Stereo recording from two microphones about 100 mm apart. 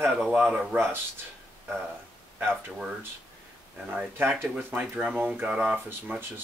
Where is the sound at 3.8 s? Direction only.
15° right (ahead or behind).